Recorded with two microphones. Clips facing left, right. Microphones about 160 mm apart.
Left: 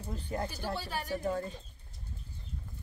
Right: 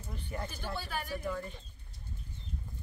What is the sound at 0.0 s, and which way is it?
Speech, 35° left (ahead or behind).